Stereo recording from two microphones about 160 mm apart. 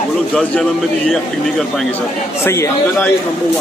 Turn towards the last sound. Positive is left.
turn(degrees=15)  # may be behind; listen again after turning